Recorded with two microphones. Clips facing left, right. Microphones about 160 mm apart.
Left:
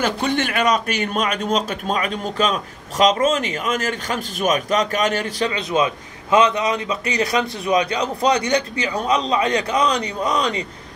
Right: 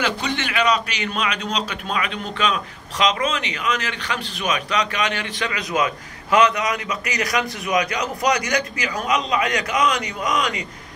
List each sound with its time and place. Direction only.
0.0 s a man's voice: 50° left (ahead or behind)
5.5 s a man's voice: 25° left (ahead or behind)